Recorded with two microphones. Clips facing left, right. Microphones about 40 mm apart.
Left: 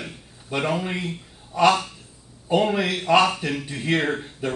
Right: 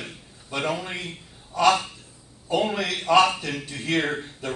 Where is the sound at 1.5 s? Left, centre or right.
Centre.